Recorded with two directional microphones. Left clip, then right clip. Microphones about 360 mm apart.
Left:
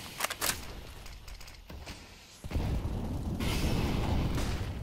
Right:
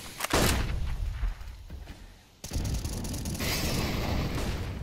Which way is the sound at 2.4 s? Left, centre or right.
Right.